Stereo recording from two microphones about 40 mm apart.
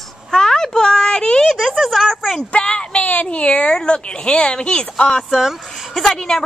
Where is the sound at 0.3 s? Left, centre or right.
Centre.